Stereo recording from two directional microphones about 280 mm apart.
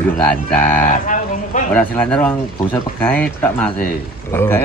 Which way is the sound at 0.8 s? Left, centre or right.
Left.